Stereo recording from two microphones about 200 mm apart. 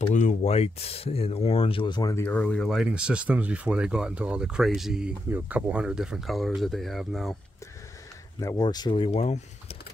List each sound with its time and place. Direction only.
0.0 s speech: 35° left (ahead or behind); by 7.3 s centre (ahead or behind)
8.4 s speech: 20° left (ahead or behind)